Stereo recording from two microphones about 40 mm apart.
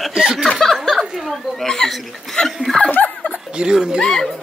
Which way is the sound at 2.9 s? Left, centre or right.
Left.